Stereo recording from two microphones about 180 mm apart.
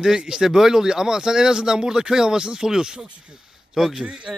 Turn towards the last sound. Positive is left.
turn(degrees=-5)  # may be behind; listen again after turning